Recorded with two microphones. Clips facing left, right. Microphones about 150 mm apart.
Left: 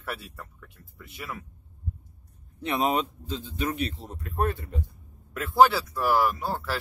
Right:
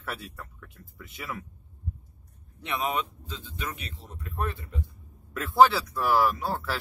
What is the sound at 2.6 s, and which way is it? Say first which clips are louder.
Speech: left 4 dB; 30° left (ahead or behind).